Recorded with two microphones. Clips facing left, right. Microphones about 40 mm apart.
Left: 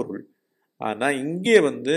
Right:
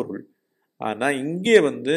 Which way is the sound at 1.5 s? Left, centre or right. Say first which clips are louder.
Right 1 dB; centre.